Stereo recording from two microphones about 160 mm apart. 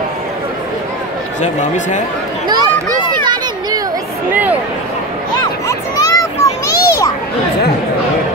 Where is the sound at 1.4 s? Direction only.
50° left (ahead or behind).